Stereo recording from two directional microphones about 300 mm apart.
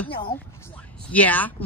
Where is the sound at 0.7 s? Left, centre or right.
Centre.